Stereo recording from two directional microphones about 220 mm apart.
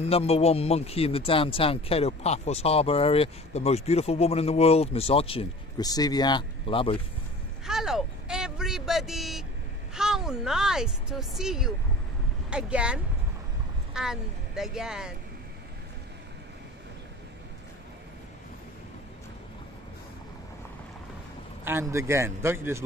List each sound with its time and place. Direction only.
0.0 s speech: 30° left (ahead or behind)
7.6 s speech: centre (ahead or behind)
21.6 s a man's voice: 10° right (ahead or behind)